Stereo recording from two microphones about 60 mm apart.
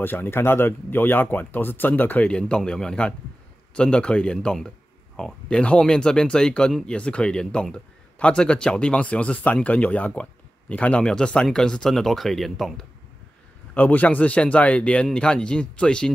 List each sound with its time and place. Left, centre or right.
0.0 s a man's voice: left; by 12.8 s centre
13.7 s a man's voice: left